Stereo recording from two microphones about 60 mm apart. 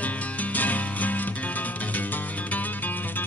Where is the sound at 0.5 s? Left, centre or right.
Left.